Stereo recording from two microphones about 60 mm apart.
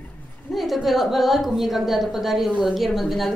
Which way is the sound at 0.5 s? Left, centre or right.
Centre.